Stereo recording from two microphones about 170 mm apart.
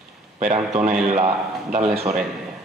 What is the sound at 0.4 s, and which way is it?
A man's voice, 45° right (ahead or behind).